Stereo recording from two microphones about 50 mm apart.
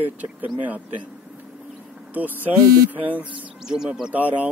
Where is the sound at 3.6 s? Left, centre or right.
Centre.